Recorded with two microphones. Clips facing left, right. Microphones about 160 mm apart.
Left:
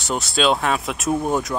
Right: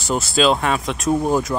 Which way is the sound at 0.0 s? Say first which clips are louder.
Right 3 dB; centre (ahead or behind).